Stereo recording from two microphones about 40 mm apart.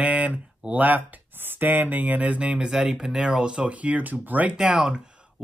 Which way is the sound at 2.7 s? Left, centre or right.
Centre.